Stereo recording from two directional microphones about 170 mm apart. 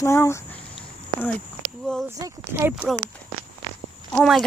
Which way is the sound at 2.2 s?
15° right (ahead or behind).